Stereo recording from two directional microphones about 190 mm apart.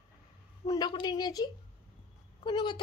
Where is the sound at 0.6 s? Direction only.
20° left (ahead or behind).